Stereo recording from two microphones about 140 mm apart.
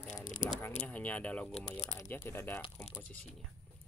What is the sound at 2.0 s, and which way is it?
Speech, 20° left (ahead or behind).